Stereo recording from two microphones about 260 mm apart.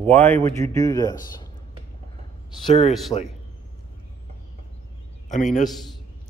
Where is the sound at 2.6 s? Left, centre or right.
Left.